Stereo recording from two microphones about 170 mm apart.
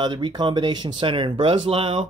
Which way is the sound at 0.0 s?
25° right (ahead or behind).